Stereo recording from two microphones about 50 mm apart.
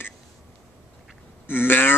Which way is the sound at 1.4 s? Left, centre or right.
Left.